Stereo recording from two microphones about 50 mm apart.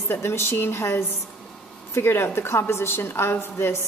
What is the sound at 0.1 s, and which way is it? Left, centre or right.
A woman's voice, left.